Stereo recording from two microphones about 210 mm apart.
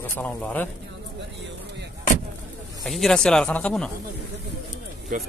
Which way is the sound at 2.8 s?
Centre (ahead or behind).